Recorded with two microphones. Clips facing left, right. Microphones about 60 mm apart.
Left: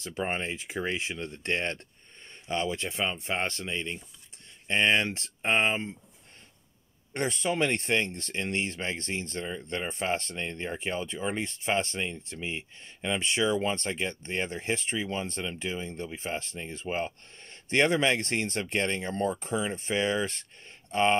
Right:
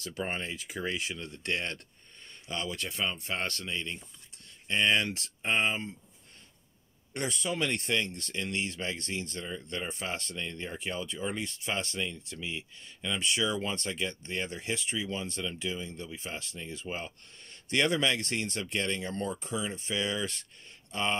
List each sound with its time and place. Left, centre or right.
0.0 s speech: left
7.2 s speech: left